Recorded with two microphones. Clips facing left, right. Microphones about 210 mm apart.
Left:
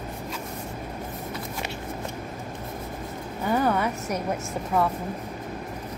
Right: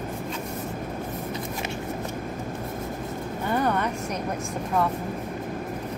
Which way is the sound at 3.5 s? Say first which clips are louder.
Left 2 dB; 5° left (ahead or behind).